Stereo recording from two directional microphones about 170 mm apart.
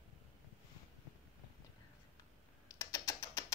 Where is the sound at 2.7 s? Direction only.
20° left (ahead or behind).